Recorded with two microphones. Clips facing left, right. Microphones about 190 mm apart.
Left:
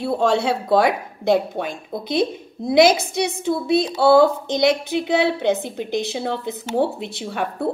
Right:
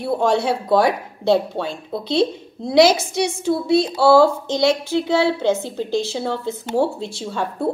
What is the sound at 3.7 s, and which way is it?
A woman's voice, 20° left (ahead or behind).